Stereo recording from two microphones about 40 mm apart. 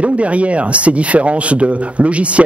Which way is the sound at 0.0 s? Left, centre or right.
Right.